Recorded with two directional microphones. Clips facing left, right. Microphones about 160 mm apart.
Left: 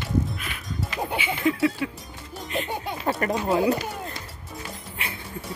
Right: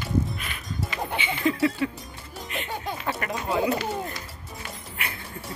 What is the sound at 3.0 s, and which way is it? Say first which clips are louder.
Speech: left 9 dB; 40° left (ahead or behind).